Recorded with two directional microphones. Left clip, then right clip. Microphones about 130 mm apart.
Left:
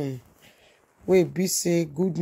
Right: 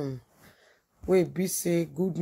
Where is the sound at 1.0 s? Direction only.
35° left (ahead or behind).